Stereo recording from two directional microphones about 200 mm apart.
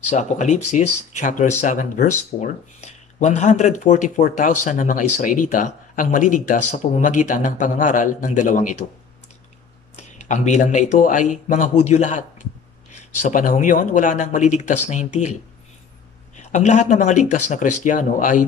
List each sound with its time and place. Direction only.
0.1 s speech: 35° left (ahead or behind)
9.9 s a man's voice: 35° left (ahead or behind)
16.3 s speech: 35° left (ahead or behind)